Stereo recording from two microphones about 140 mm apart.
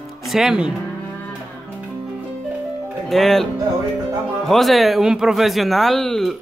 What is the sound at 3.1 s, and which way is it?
Speech, centre (ahead or behind).